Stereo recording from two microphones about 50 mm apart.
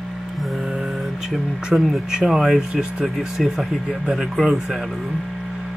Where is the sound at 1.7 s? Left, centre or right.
Centre.